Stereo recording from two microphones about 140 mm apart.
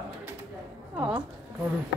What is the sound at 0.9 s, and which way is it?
Speech, 15° right (ahead or behind).